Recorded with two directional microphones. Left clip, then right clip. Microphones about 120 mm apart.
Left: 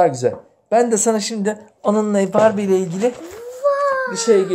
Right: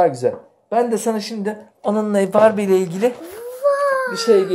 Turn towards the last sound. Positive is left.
turn(degrees=0)  # may be behind; listen again after turning